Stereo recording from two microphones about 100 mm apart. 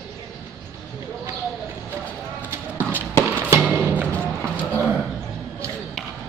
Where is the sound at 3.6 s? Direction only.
15° right (ahead or behind).